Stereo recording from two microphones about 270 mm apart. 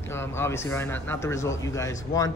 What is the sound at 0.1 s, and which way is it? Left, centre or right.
Speech, centre.